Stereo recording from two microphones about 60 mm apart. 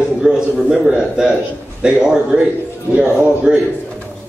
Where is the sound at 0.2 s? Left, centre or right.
Centre.